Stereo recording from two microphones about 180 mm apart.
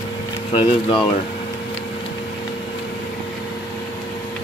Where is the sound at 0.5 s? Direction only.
30° left (ahead or behind).